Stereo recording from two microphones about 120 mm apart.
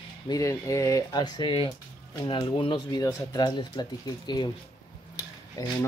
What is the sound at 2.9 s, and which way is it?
Speech, 30° left (ahead or behind).